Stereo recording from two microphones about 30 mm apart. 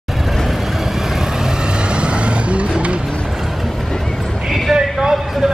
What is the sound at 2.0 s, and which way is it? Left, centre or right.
Vehicle, right.